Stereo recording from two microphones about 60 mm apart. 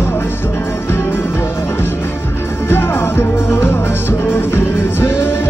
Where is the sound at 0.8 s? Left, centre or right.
Left.